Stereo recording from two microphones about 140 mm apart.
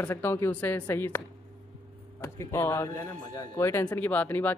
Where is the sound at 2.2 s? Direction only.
20° left (ahead or behind).